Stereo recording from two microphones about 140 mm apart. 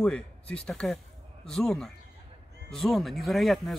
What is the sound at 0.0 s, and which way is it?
Speech, 10° left (ahead or behind).